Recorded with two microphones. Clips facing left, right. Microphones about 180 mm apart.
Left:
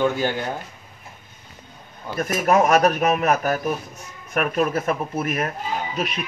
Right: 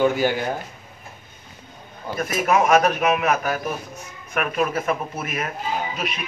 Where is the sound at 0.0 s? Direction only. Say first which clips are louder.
Right 2 dB; 10° right (ahead or behind).